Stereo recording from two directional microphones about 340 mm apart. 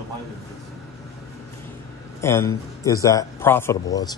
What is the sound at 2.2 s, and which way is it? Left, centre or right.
Speech, centre.